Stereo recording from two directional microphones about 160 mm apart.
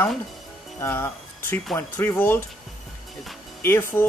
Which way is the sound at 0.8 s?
15° left (ahead or behind).